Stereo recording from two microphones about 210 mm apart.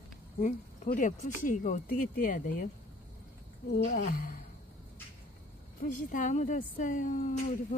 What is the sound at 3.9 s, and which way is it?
Speech, 40° left (ahead or behind).